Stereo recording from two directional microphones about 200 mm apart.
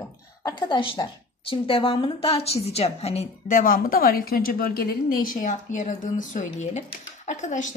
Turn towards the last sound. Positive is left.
turn(degrees=40)  # may be behind; listen again after turning